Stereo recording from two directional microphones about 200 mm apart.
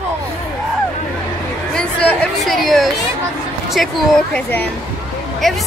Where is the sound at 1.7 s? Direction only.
5° left (ahead or behind).